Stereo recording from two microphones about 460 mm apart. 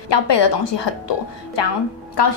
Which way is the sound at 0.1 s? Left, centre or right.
Left.